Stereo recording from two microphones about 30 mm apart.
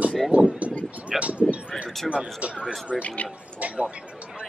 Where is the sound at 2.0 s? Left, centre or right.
Right.